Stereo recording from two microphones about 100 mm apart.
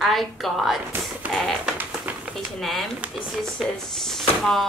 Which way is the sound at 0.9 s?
20° right (ahead or behind).